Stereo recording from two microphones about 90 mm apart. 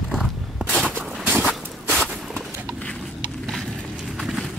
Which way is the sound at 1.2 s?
20° right (ahead or behind).